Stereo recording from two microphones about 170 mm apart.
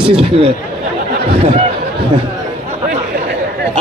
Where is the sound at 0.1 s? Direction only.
35° right (ahead or behind).